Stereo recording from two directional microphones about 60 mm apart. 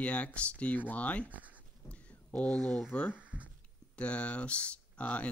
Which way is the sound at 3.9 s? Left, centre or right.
Centre.